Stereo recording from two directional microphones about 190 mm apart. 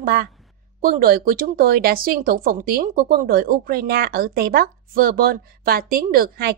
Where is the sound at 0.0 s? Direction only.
50° right (ahead or behind).